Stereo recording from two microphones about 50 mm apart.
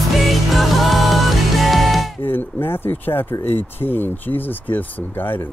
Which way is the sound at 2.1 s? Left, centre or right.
Left.